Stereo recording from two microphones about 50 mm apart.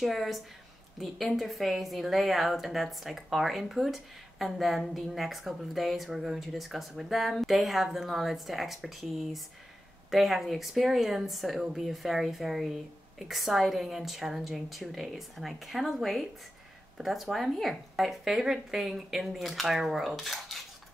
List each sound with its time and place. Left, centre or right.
0.0 s a woman's voice: centre